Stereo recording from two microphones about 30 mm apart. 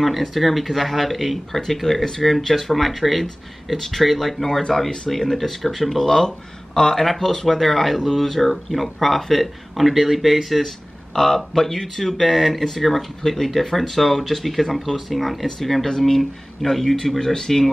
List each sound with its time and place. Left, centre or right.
0.0 s speech: centre
3.7 s speech: centre
7.0 s speech: centre
11.1 s speech: centre